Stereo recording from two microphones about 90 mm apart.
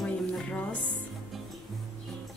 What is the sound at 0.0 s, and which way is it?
Music, 10° left (ahead or behind).